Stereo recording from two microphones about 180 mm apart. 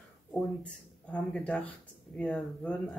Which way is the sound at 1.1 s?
5° left (ahead or behind).